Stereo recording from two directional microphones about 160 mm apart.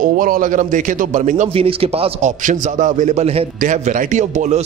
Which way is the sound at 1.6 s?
35° right (ahead or behind).